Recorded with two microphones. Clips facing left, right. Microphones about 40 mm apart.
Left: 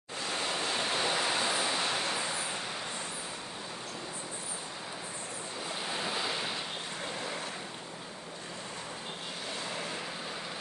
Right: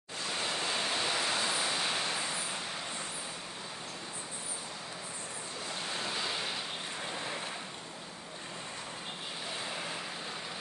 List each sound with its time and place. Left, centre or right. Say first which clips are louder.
0.2 s waves: left 1 dB; centre
5.9 s waves: left 2 dB; centre
9.7 s vehicle: left 1 dB; centre